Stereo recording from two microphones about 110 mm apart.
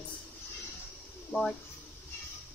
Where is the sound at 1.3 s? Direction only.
20° left (ahead or behind).